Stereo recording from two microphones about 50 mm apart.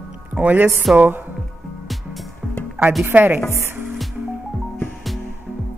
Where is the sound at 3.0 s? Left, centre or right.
Right.